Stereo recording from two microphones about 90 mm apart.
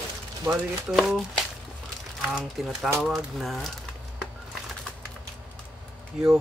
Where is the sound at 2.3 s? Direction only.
5° right (ahead or behind).